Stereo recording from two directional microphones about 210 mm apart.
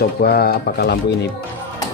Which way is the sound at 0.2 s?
45° left (ahead or behind).